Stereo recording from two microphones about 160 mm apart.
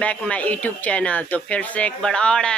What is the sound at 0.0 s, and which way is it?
Speech, 10° left (ahead or behind).